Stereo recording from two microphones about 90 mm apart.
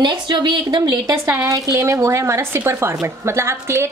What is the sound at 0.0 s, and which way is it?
Speech, 60° right (ahead or behind).